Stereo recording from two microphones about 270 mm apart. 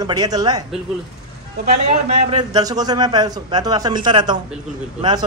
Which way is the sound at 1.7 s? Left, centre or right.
Right.